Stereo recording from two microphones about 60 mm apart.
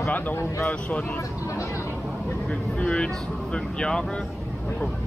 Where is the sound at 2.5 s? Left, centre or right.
Centre.